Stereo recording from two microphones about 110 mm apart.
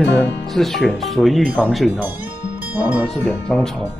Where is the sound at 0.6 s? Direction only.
Centre (ahead or behind).